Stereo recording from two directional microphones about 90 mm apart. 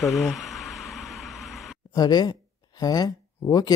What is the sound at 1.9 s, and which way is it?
Speech, 50° left (ahead or behind).